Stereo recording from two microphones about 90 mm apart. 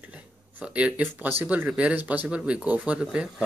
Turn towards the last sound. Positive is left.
turn(degrees=-5)  # may be behind; listen again after turning